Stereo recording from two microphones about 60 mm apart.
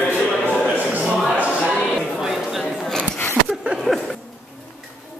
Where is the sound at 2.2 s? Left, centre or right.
Centre.